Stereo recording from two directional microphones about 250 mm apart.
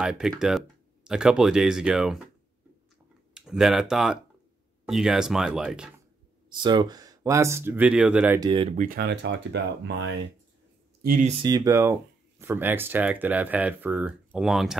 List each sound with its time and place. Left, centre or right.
0.0 s speech: centre
3.3 s speech: centre
6.5 s speech: centre
8.4 s speech: centre; by 10.1 s right
11.0 s speech: right; by 14.8 s centre